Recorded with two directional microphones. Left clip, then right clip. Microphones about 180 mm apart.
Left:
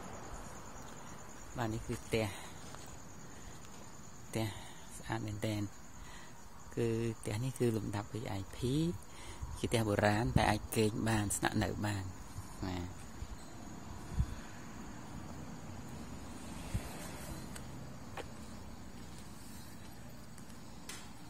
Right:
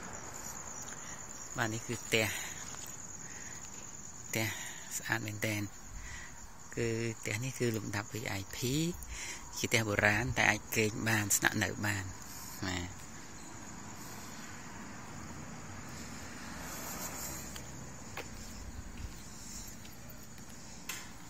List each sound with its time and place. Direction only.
1.6 s cricket: 5° left (ahead or behind)
4.3 s speech: 10° left (ahead or behind)
6.7 s speech: 20° left (ahead or behind)
12.6 s cricket: 5° left (ahead or behind)